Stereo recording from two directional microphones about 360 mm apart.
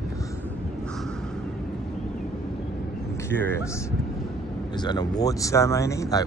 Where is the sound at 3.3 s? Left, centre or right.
Centre.